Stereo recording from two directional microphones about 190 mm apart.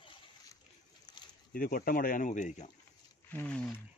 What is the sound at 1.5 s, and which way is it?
Speech, 50° left (ahead or behind).